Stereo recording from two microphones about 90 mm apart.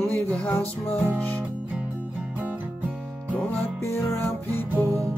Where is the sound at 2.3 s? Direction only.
15° right (ahead or behind).